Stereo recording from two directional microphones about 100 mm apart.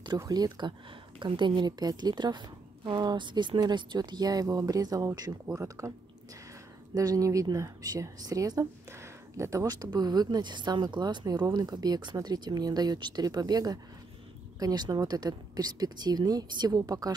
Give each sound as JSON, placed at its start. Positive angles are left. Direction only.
{"t": 0.2, "sound": "a woman's voice", "side_deg": -40}